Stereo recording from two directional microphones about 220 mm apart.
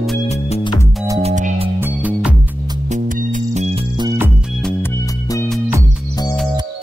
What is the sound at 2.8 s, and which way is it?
Music, 35° right (ahead or behind).